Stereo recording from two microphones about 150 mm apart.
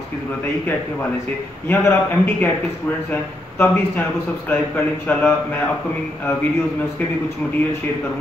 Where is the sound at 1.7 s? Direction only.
15° left (ahead or behind).